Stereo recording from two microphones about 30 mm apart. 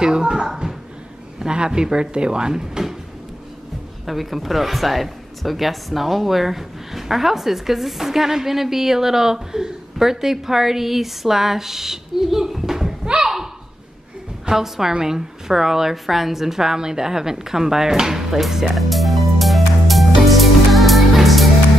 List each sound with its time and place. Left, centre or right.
0.0 s a sound: right
1.4 s speech: right
4.0 s speech: centre
13.2 s a sound: centre
14.5 s speech: centre
18.8 s music: centre